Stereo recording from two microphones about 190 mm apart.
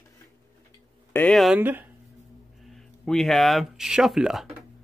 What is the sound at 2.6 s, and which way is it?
Speech, centre (ahead or behind).